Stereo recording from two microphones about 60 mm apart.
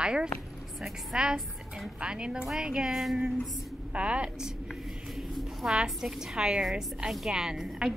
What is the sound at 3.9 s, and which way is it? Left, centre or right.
Speech, centre.